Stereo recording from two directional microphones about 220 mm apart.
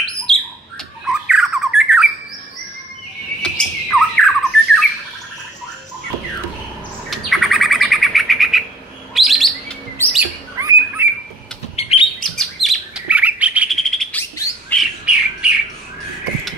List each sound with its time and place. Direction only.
1.0 s squawk: 5° right (ahead or behind)
3.4 s squawk: centre (ahead or behind)
7.1 s bird: centre (ahead or behind)
10.1 s bird: 10° right (ahead or behind)
11.7 s chirp: 25° left (ahead or behind)
12.2 s chirp: centre (ahead or behind)
14.4 s bird: 5° left (ahead or behind)